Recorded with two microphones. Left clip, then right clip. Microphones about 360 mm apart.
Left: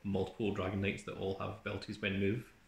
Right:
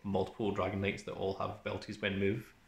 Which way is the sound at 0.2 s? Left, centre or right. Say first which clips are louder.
Right 2 dB; centre.